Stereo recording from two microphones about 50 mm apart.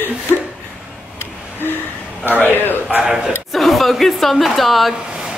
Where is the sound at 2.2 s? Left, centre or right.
Left.